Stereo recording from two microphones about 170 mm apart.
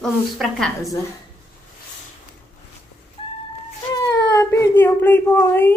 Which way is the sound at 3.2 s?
35° left (ahead or behind).